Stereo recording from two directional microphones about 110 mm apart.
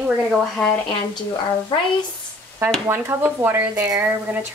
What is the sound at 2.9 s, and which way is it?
Speech, 20° right (ahead or behind).